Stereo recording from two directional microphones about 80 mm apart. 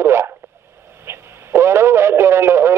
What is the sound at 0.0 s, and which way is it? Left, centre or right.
Radio, right.